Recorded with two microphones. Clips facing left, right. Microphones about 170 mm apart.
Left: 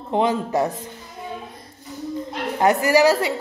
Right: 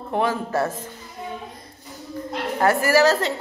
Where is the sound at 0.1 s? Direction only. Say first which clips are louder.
Left 3 dB; 20° left (ahead or behind).